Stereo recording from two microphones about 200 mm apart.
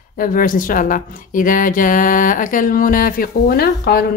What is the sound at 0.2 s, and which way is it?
Speech, 40° left (ahead or behind).